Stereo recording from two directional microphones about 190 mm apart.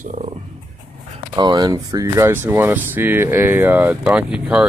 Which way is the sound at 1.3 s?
20° right (ahead or behind).